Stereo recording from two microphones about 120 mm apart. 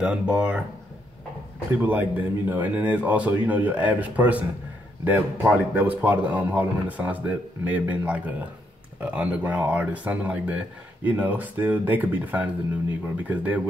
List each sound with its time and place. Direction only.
0.0 s speech: 10° right (ahead or behind)
1.8 s speech: 15° right (ahead or behind)